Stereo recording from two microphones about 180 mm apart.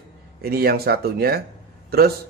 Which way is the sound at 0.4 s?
60° right (ahead or behind).